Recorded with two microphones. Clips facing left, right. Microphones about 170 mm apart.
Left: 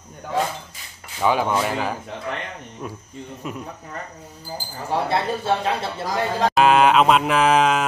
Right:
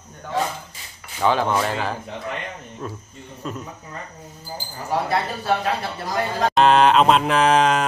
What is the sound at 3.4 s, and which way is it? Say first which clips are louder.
Speech: right 1 dB; 10° left (ahead or behind).